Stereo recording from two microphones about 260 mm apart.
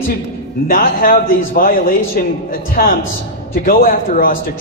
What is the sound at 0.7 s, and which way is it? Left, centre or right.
A man's voice, left.